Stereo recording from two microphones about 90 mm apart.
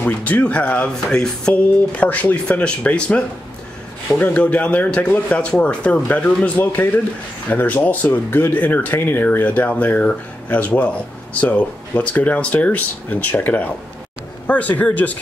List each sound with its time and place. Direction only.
0.0 s speech: 15° left (ahead or behind)